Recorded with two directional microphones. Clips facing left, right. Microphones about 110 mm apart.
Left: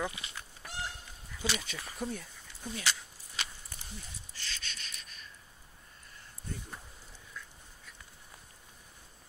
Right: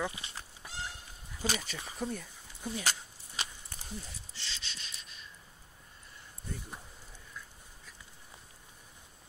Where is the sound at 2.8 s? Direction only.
35° right (ahead or behind).